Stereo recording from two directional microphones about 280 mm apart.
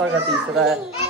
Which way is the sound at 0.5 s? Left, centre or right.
Centre.